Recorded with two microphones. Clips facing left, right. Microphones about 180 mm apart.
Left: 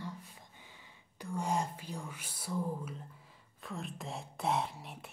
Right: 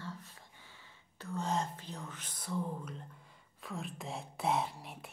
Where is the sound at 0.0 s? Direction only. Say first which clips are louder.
Left 2 dB; 15° left (ahead or behind).